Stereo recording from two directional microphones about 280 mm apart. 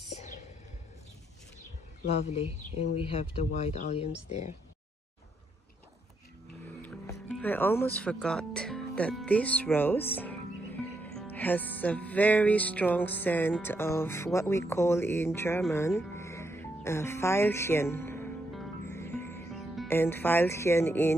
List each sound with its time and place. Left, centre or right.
2.0 s speech: left
6.6 s speech: centre
15.9 s music: centre